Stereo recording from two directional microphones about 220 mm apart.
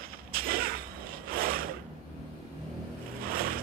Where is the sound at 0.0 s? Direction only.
40° right (ahead or behind).